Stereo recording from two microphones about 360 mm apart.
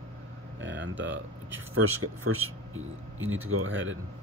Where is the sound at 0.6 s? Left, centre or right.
Right.